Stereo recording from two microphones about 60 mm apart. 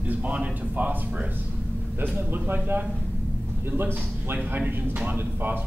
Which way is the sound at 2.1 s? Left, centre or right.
Right.